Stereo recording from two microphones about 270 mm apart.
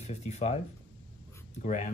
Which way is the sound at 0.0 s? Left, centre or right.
Left.